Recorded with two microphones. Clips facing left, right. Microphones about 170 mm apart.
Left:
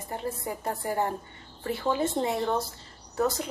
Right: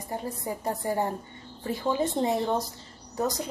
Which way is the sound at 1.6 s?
20° right (ahead or behind).